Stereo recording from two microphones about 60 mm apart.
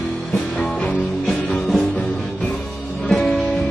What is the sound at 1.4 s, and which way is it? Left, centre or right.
Music, left.